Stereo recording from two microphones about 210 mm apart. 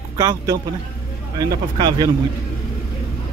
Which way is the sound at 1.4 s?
20° right (ahead or behind).